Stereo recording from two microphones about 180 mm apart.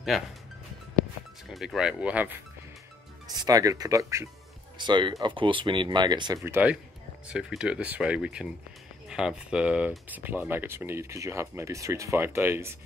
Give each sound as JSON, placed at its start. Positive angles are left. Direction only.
{"t": 1.5, "sound": "speech", "side_deg": 0}
{"t": 3.4, "sound": "speech", "side_deg": -20}
{"t": 6.4, "sound": "speech", "side_deg": -10}